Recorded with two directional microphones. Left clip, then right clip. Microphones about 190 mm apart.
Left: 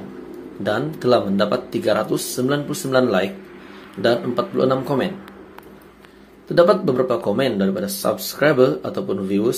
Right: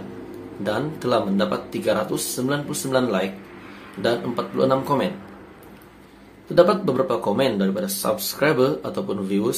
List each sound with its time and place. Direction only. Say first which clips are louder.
0.7 s speech: left 5 dB; 15° left (ahead or behind)
6.5 s speech: left 2 dB; 15° left (ahead or behind)